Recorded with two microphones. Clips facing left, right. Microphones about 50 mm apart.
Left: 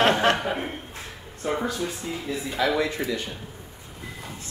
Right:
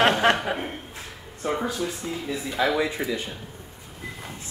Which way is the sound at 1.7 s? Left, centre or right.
Centre.